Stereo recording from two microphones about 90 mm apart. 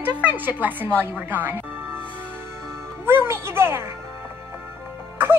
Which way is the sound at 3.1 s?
25° right (ahead or behind).